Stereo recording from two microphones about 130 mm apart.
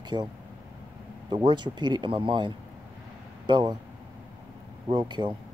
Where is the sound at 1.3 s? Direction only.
35° right (ahead or behind).